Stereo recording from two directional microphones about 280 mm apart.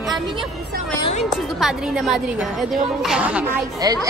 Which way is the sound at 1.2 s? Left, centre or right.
Centre.